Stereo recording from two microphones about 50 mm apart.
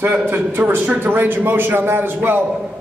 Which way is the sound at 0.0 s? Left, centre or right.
Right.